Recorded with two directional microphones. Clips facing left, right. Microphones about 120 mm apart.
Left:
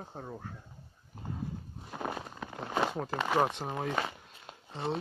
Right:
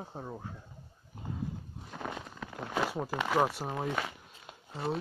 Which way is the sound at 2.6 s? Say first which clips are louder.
Left 1 dB; centre (ahead or behind).